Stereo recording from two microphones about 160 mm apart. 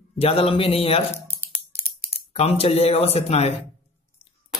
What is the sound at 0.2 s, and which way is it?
Speech, 40° left (ahead or behind).